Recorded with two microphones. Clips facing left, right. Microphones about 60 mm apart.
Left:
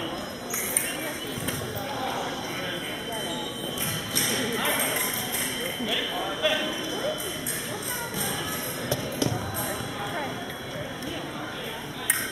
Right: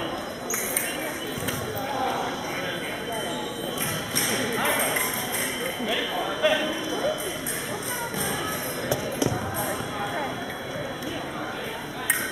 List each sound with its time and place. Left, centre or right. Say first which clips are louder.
2.0 s clip-clop: right 4 dB; centre
4.3 s a sound: right 2 dB; centre
8.8 s music: right 2 dB; centre